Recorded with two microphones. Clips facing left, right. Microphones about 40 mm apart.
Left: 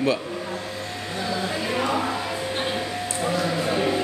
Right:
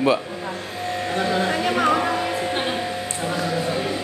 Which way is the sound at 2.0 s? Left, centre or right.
Right.